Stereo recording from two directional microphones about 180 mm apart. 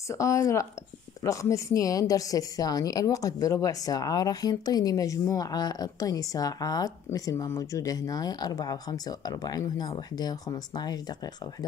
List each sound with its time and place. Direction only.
0.1 s a woman's voice: 15° left (ahead or behind)